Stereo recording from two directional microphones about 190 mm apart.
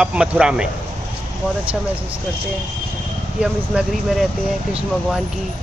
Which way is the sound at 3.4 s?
5° right (ahead or behind).